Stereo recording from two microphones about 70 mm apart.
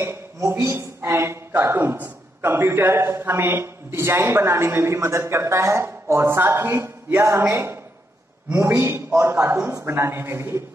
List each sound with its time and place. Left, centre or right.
0.0 s a man's voice: right